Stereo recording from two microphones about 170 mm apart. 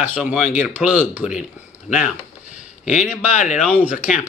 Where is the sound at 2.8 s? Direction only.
45° left (ahead or behind).